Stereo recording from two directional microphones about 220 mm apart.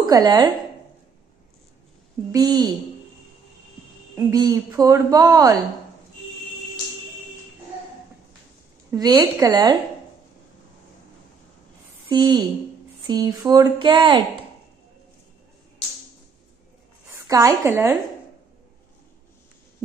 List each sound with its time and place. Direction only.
0.0 s a woman's voice: 15° right (ahead or behind)
2.3 s speech: 20° right (ahead or behind)
4.1 s speech: 15° right (ahead or behind)
8.9 s speech: 15° right (ahead or behind)
12.1 s speech: 20° right (ahead or behind)
17.1 s a woman's voice: 15° right (ahead or behind)